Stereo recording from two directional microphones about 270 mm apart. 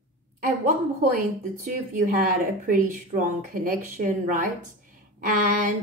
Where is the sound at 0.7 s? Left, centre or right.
Right.